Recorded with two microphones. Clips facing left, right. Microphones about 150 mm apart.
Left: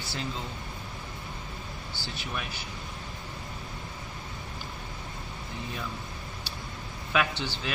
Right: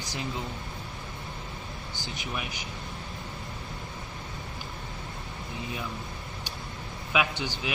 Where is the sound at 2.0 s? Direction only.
15° right (ahead or behind).